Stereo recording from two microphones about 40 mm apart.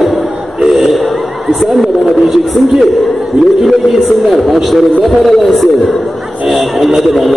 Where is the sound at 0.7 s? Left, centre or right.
Centre.